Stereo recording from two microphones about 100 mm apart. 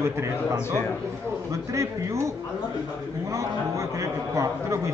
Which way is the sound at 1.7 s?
30° right (ahead or behind).